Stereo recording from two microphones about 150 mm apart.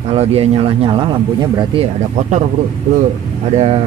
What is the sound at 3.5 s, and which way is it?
Speech, 45° right (ahead or behind).